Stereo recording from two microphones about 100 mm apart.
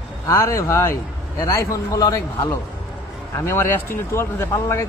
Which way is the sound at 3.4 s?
25° left (ahead or behind).